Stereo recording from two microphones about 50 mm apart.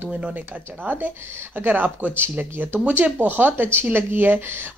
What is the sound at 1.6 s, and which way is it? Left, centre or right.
Speech, right.